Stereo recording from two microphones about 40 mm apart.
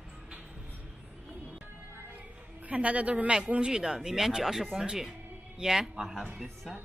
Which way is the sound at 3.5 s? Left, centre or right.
Right.